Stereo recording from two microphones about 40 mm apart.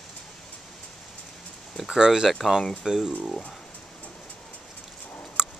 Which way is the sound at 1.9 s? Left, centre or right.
Centre.